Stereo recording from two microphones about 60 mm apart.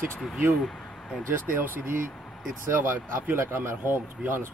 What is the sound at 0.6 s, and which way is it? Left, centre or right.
Speech, centre.